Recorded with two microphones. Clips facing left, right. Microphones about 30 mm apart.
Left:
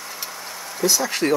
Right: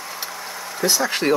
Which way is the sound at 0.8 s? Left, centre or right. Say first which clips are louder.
Even; right.